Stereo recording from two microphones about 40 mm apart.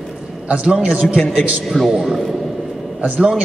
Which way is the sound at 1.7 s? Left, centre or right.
Centre.